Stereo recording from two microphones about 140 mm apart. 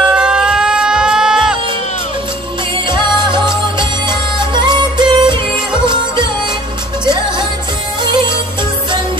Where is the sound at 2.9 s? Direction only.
35° right (ahead or behind).